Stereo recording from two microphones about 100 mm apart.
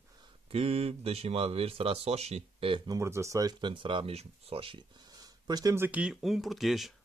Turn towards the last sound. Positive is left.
turn(degrees=0)  # may be behind; listen again after turning